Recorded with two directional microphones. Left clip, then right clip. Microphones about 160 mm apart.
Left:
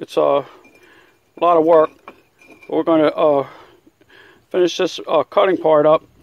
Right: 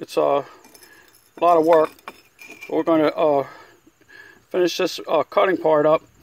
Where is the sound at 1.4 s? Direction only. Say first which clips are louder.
Left 3 dB; centre (ahead or behind).